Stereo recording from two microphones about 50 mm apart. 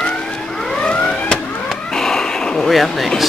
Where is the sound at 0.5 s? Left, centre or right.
Centre.